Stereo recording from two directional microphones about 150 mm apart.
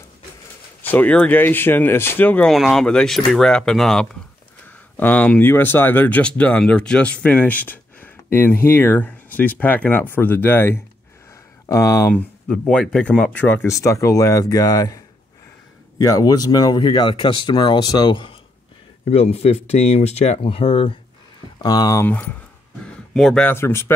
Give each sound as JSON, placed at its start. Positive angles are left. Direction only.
{"t": 0.8, "sound": "speech", "side_deg": 10}
{"t": 2.5, "sound": "speech", "side_deg": 0}
{"t": 12.1, "sound": "speech", "side_deg": 5}
{"t": 21.6, "sound": "speech", "side_deg": 25}
{"t": 23.1, "sound": "speech", "side_deg": 5}
{"t": 23.5, "sound": "speech", "side_deg": 15}